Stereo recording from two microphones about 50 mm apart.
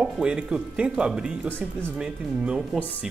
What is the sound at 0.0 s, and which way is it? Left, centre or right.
Speech, centre.